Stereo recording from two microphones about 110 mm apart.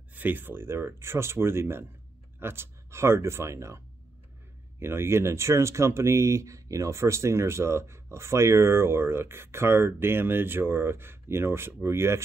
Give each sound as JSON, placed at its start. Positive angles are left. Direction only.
{"t": 0.1, "sound": "speech", "side_deg": -15}